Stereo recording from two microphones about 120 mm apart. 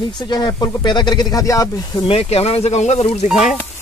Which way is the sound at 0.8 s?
40° left (ahead or behind).